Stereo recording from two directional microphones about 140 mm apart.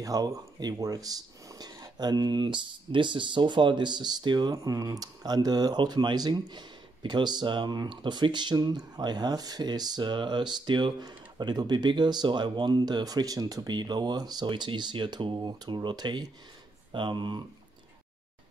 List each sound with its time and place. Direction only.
0.0 s speech: 25° right (ahead or behind)